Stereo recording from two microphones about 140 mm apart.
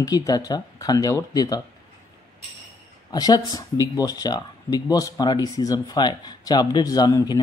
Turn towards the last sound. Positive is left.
turn(degrees=30)  # may be behind; listen again after turning